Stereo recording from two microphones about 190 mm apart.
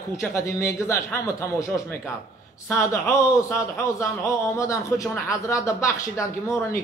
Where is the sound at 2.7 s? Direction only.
15° left (ahead or behind).